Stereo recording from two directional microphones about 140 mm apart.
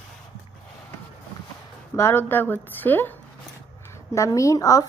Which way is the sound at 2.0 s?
20° left (ahead or behind).